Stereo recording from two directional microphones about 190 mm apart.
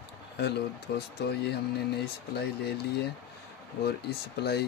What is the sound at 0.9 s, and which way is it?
Speech, 60° left (ahead or behind).